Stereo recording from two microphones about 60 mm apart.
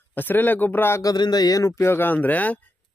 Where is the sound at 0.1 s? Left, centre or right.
Left.